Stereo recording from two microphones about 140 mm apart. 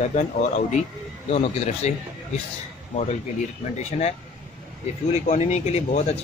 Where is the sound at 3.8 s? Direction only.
50° left (ahead or behind).